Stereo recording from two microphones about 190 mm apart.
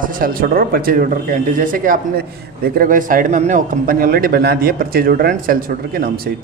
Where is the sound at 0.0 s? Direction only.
45° right (ahead or behind).